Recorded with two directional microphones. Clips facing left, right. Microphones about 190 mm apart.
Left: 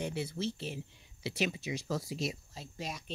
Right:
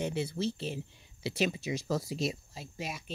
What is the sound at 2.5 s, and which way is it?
Speech, 10° right (ahead or behind).